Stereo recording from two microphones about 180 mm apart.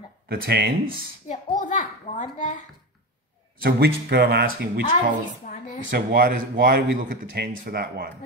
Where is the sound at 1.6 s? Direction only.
45° left (ahead or behind).